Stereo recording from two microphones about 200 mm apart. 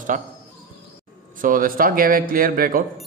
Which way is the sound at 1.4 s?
45° right (ahead or behind).